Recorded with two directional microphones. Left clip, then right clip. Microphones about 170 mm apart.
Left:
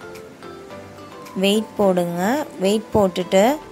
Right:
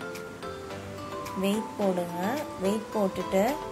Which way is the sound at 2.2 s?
55° left (ahead or behind).